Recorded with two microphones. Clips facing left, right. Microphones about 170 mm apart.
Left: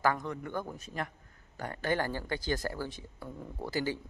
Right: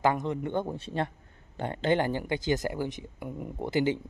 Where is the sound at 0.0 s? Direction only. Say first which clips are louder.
Right 4 dB; 20° right (ahead or behind).